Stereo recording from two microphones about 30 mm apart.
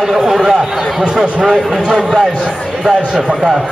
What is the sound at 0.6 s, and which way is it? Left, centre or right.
Speech, right.